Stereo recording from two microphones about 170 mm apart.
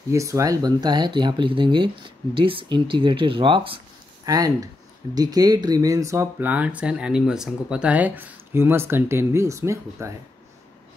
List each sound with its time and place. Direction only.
0.1 s speech: 20° right (ahead or behind)